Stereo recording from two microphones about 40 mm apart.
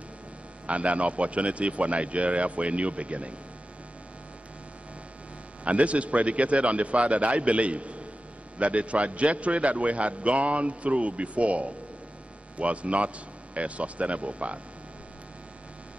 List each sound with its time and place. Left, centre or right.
0.7 s a man's voice: right
5.6 s a man's voice: right